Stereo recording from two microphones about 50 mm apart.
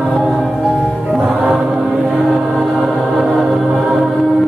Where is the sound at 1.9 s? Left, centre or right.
Centre.